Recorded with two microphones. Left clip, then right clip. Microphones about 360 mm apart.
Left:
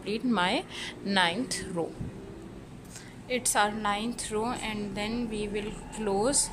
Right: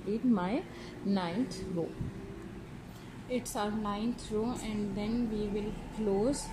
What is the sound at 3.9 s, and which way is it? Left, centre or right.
Speech, left.